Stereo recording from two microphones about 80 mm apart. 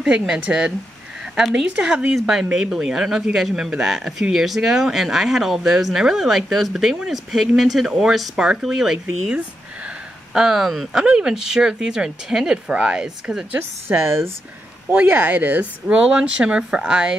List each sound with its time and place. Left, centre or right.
0.3 s speech: centre
13.5 s a woman's voice: right; by 17.1 s centre